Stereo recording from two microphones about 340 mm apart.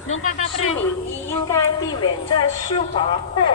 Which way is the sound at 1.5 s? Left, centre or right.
Centre.